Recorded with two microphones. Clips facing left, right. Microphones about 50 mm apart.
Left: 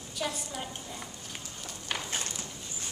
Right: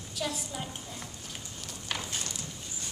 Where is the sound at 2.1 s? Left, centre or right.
Left.